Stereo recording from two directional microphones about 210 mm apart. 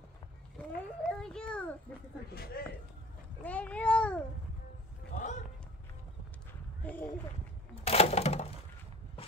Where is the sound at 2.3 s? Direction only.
45° left (ahead or behind).